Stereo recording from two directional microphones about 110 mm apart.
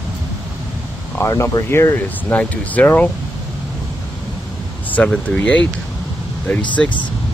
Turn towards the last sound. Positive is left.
turn(degrees=10)  # may be behind; listen again after turning